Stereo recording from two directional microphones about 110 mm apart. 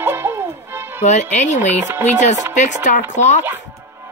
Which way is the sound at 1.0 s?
90° left.